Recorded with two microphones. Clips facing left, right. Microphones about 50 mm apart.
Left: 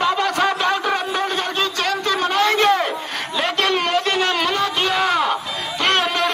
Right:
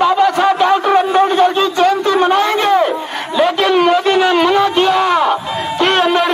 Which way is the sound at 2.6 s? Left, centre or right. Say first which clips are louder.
Right 5 dB; centre.